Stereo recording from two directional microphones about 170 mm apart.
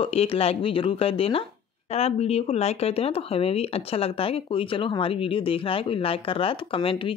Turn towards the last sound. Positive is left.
turn(degrees=30)  # may be behind; listen again after turning